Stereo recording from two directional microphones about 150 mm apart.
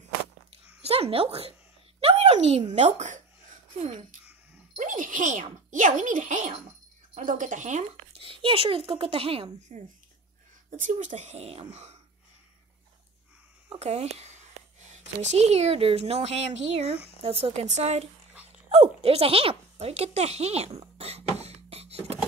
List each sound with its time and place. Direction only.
0.8 s speech: 40° right (ahead or behind)
4.7 s speech: 60° right (ahead or behind)
8.2 s speech: 35° right (ahead or behind)
10.8 s speech: 55° right (ahead or behind)
13.7 s speech: 45° right (ahead or behind)